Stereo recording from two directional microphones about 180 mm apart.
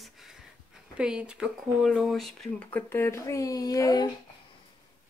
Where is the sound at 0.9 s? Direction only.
5° right (ahead or behind); by 4.1 s 20° left (ahead or behind).